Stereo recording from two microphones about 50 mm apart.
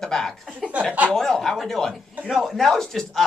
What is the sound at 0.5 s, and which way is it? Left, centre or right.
Speech, right.